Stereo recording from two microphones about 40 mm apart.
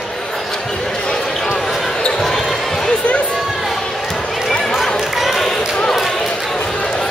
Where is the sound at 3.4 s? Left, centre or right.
Centre.